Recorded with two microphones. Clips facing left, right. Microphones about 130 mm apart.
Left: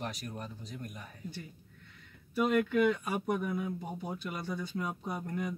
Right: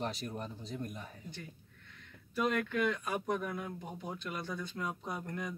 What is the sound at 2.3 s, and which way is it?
Speech, 5° left (ahead or behind).